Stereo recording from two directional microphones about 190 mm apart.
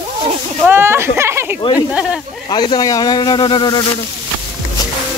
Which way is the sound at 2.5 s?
20° left (ahead or behind).